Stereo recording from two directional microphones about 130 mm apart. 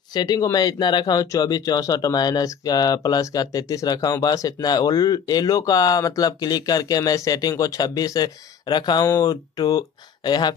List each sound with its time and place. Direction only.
0.1 s speech: 30° left (ahead or behind)